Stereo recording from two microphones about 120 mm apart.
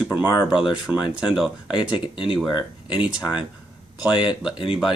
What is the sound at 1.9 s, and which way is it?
Speech, 45° left (ahead or behind).